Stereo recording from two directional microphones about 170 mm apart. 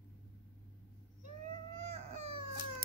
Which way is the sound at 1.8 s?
40° right (ahead or behind).